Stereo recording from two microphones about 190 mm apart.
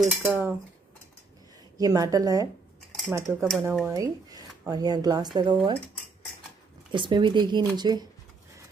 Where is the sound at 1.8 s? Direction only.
20° right (ahead or behind).